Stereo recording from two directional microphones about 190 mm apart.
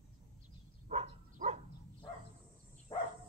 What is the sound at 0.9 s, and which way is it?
Bow-wow, 35° right (ahead or behind).